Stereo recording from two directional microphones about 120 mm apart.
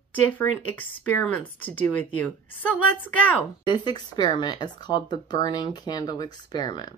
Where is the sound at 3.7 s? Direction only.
40° left (ahead or behind).